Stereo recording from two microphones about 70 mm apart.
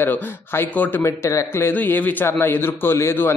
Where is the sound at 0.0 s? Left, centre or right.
Left.